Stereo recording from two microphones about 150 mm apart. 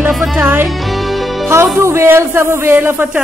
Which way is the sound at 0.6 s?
Centre (ahead or behind).